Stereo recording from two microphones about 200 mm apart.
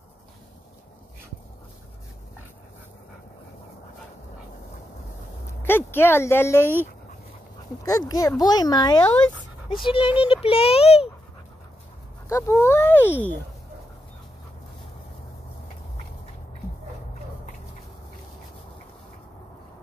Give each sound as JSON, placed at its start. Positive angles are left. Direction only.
{"t": 5.6, "sound": "speech", "side_deg": 10}
{"t": 7.8, "sound": "speech", "side_deg": 15}
{"t": 12.3, "sound": "speech", "side_deg": 15}